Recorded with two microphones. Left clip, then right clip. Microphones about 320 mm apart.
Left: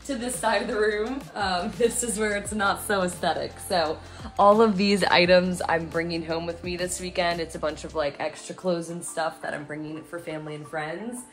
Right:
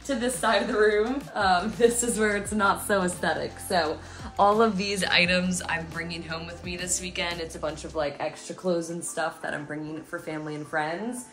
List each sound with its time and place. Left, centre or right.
0.4 s a woman's voice: centre
4.4 s speech: left
8.6 s speech: centre
10.3 s a woman's voice: centre